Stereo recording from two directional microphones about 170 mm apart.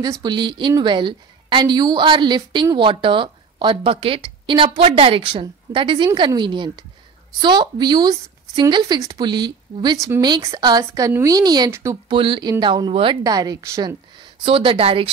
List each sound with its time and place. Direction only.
0.0 s a woman's voice: 25° right (ahead or behind)
12.1 s a woman's voice: 30° right (ahead or behind)
14.4 s speech: 30° right (ahead or behind)